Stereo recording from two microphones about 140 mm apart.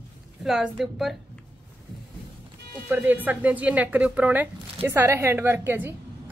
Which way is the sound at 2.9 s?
15° right (ahead or behind).